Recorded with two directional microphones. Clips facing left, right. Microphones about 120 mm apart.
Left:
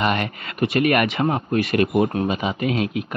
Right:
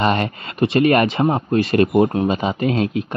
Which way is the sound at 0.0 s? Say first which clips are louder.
Right 3 dB; 30° right (ahead or behind).